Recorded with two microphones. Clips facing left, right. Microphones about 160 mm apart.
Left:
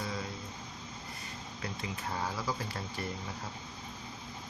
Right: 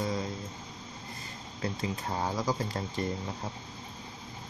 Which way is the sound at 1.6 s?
35° right (ahead or behind).